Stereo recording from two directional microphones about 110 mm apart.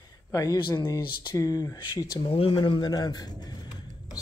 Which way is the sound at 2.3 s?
55° left (ahead or behind).